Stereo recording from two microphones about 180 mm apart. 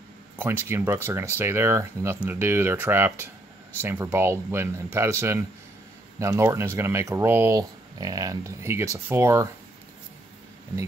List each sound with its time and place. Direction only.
0.4 s speech: 15° right (ahead or behind)